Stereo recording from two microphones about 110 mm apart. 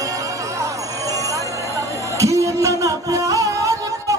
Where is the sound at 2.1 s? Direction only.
30° right (ahead or behind).